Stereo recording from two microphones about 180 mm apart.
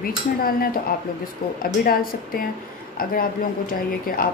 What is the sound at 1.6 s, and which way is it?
Speech, 55° left (ahead or behind).